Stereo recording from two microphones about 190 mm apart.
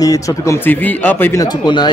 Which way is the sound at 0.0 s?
15° left (ahead or behind).